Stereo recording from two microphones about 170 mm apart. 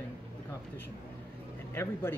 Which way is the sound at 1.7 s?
15° left (ahead or behind).